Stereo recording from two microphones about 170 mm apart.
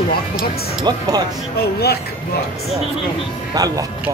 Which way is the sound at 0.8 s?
25° right (ahead or behind).